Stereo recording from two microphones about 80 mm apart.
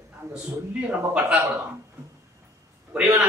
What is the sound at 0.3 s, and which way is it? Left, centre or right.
Speech, centre.